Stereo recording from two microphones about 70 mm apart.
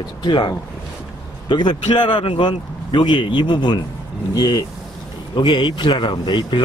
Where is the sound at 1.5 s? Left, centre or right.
Left.